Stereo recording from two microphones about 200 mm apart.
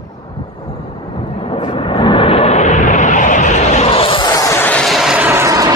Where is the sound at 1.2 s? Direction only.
25° left (ahead or behind).